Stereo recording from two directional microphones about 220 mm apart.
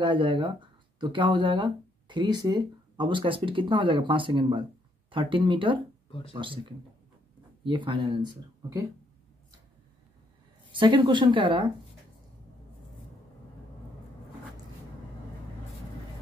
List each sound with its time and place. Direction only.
0.0 s speech: 20° right (ahead or behind)
10.7 s speech: 20° right (ahead or behind)